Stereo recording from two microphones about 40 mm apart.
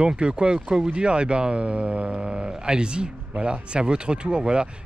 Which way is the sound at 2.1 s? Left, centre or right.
Centre.